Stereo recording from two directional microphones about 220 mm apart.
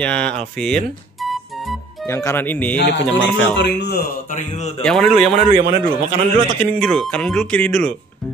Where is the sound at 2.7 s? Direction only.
55° left (ahead or behind).